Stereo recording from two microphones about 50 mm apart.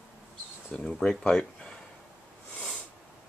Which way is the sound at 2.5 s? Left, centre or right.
Left.